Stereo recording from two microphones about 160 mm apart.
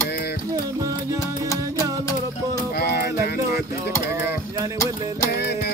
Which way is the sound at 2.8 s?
75° left (ahead or behind).